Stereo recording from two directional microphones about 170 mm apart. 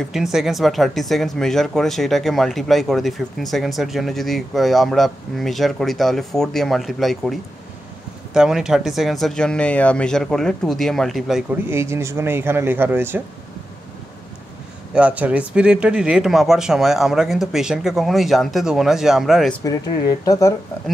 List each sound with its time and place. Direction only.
0.1 s speech: 5° right (ahead or behind)
11.7 s speech: 15° right (ahead or behind)
15.0 s speech: 10° right (ahead or behind)
19.6 s speech: 20° left (ahead or behind)